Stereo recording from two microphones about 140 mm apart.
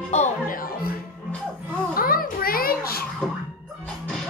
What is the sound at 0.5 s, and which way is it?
Music, 90° left.